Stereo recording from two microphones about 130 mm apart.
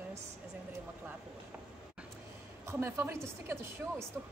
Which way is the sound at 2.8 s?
20° right (ahead or behind).